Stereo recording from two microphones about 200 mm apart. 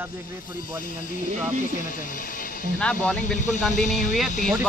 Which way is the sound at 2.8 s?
5° left (ahead or behind).